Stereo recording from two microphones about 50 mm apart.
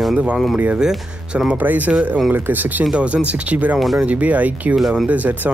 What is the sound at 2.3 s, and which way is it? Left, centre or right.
Speech, right.